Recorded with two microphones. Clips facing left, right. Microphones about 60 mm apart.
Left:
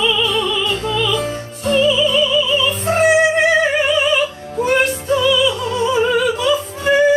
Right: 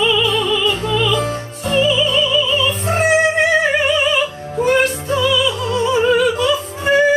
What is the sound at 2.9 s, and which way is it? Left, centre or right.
Music, centre.